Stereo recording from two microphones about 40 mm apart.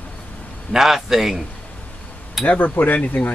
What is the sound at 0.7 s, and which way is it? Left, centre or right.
Speech, centre.